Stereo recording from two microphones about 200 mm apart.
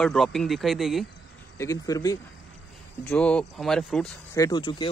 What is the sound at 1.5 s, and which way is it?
Speech, 15° left (ahead or behind).